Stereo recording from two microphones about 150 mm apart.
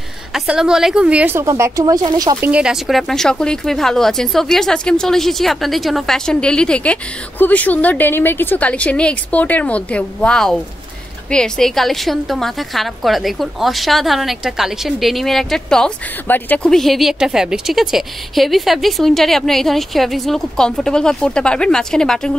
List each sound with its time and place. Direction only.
0.3 s speech: 5° right (ahead or behind); by 2.3 s 25° right (ahead or behind)
2.4 s a woman's voice: 5° right (ahead or behind)